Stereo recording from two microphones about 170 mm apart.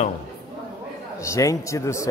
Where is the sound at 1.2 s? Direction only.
20° left (ahead or behind).